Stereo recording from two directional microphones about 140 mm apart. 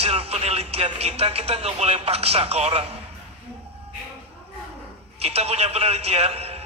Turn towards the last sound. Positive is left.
turn(degrees=-45)  # may be behind; listen again after turning